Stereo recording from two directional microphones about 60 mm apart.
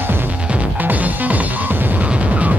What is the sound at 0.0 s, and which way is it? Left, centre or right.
Music, right.